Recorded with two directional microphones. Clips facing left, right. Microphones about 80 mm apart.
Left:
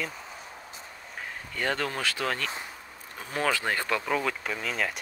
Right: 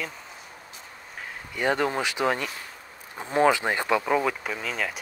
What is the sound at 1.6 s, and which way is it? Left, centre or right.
Speech, centre.